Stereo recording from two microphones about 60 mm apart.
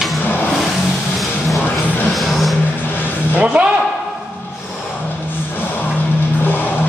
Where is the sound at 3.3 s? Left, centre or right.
Right.